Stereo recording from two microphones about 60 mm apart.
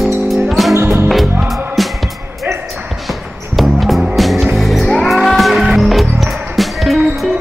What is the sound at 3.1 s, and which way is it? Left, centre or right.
Music, centre.